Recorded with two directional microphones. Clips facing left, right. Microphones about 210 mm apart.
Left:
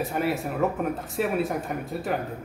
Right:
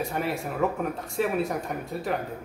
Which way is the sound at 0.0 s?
Centre (ahead or behind).